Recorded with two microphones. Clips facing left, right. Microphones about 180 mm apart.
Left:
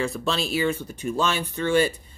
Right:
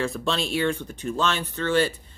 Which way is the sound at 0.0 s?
Centre (ahead or behind).